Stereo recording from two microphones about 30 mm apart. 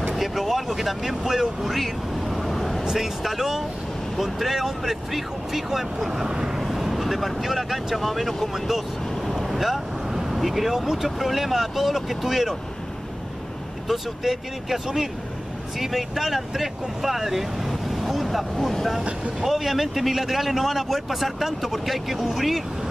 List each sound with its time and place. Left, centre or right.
0.1 s speech: centre
1.7 s vehicle: centre
2.8 s speech: centre
6.3 s vehicle: right
6.6 s speech: centre
13.8 s speech: centre